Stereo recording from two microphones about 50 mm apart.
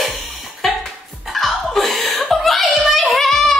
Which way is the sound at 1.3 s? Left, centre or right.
Centre.